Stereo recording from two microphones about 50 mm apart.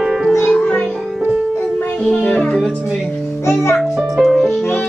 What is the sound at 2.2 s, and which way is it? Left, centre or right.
Speech, left.